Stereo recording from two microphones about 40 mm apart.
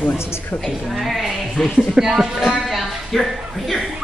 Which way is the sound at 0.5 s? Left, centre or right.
Left.